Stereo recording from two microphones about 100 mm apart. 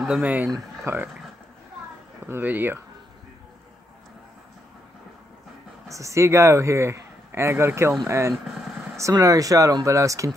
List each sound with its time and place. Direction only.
0.0 s speech: 5° right (ahead or behind)
0.8 s speech: 20° right (ahead or behind)
2.2 s speech: 20° right (ahead or behind)
5.9 s a man's voice: 30° right (ahead or behind)